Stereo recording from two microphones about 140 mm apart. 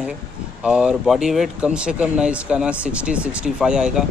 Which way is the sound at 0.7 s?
5° right (ahead or behind).